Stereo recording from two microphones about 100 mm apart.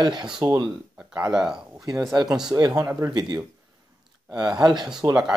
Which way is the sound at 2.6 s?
35° right (ahead or behind).